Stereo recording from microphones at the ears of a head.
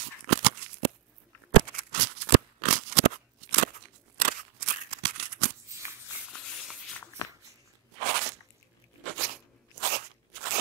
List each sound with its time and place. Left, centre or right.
0.0 s shuffling cards: right
1.5 s scissors: right
6.0 s a sound: left
7.9 s crunch: right